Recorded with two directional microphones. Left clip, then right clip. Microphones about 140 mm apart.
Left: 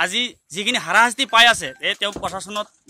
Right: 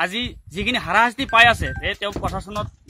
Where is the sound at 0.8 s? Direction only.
30° left (ahead or behind).